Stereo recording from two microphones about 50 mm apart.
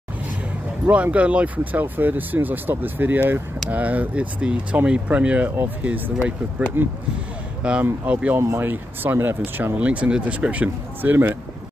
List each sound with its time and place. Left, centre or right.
0.8 s speech: right
6.8 s speech: right
7.6 s speech: right
8.4 s speech: right
8.6 s speech: right
9.8 s speech: right